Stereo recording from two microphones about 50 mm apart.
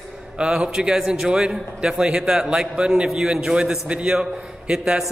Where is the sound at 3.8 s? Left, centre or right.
Right.